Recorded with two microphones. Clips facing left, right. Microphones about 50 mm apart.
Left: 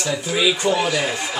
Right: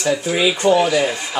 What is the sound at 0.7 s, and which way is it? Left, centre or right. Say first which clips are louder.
Speech: right 5 dB; centre.